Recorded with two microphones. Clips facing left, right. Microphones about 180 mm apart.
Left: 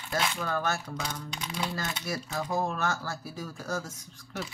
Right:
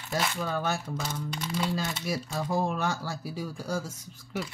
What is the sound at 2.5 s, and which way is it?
Speech, 15° right (ahead or behind).